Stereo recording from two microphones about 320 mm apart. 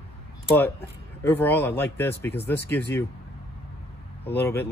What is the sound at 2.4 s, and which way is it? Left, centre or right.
Speech, left.